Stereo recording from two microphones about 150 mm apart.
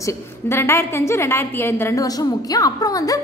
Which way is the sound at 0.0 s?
15° left (ahead or behind).